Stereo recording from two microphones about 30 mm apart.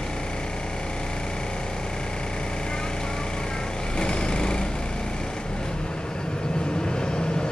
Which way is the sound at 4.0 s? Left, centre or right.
Left.